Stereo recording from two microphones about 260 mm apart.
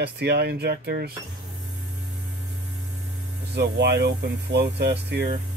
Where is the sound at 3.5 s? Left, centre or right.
Right.